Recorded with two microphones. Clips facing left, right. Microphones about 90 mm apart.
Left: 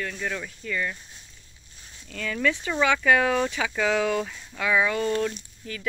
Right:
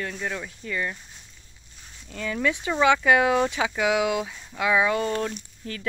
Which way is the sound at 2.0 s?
20° right (ahead or behind).